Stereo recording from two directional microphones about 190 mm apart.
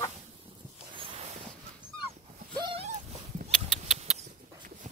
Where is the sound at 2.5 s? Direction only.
25° right (ahead or behind).